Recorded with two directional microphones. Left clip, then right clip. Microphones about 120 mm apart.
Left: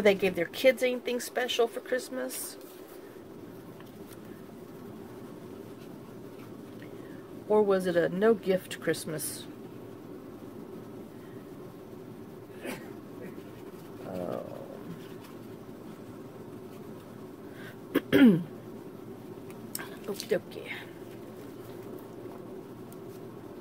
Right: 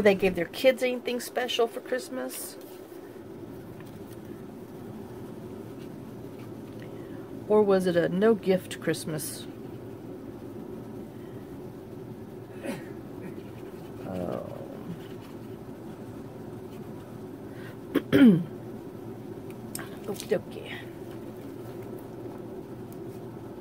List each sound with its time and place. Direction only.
0.0 s speech: 5° left (ahead or behind)
7.4 s speech: 5° right (ahead or behind)
14.1 s roaring cats: 10° left (ahead or behind)
17.9 s throat clearing: 15° left (ahead or behind)
19.8 s a sound: 15° left (ahead or behind)